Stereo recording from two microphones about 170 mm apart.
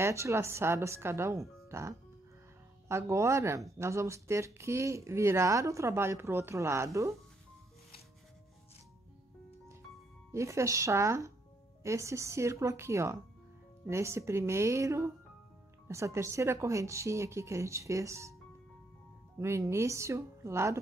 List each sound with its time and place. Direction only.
0.0 s speech: 15° right (ahead or behind)
10.3 s speech: 15° right (ahead or behind)
19.3 s speech: 15° right (ahead or behind)